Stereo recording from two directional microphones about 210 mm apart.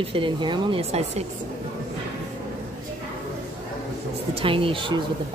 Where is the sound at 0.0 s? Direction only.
25° right (ahead or behind).